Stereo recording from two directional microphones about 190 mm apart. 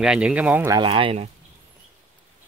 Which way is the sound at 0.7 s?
25° right (ahead or behind).